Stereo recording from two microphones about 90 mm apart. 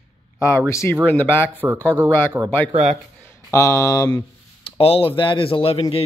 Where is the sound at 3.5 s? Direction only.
35° left (ahead or behind).